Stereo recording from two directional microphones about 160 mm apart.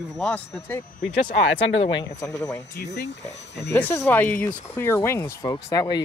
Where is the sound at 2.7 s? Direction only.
90° left.